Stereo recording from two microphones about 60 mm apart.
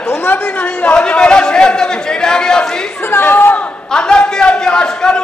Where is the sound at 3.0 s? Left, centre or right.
Left.